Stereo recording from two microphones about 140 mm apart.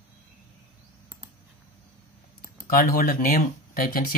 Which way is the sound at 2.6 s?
90° left.